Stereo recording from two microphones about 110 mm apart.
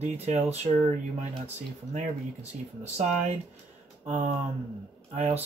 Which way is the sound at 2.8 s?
90° right.